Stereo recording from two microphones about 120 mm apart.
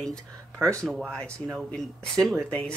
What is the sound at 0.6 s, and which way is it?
Speech, 25° right (ahead or behind).